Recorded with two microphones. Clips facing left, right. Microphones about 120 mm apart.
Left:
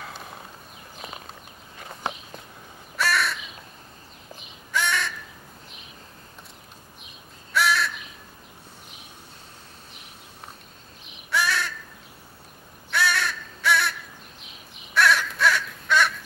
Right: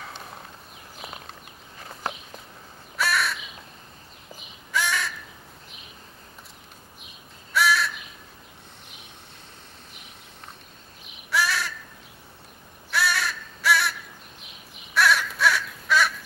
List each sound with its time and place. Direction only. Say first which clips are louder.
0.0 s clip-clop: left 1 dB; centre (ahead or behind)
3.0 s crow: left 1 dB; centre (ahead or behind)
4.7 s crow: left 1 dB; centre (ahead or behind)
7.5 s crow: right 1 dB; centre (ahead or behind)
11.2 s crow: even; centre (ahead or behind)
12.9 s crow: left 1 dB; centre (ahead or behind)
15.0 s a sound: left 1 dB; centre (ahead or behind)